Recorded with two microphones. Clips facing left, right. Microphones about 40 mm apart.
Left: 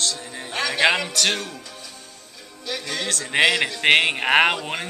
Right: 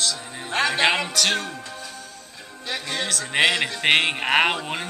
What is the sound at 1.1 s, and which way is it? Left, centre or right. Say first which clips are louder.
Speech: even; centre.